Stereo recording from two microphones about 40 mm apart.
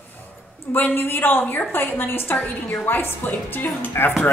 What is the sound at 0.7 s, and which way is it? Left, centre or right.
Speech, left.